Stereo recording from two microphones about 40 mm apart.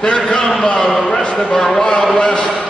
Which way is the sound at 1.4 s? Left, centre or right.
Centre.